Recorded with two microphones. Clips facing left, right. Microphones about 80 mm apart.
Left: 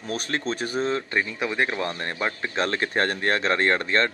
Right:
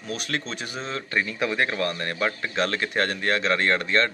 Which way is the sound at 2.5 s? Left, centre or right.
Left.